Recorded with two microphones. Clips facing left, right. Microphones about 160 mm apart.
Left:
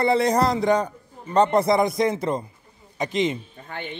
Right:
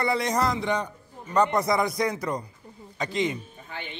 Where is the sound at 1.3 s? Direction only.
30° left (ahead or behind).